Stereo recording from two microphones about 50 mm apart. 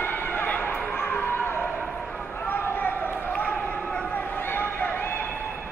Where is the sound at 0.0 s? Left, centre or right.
Left.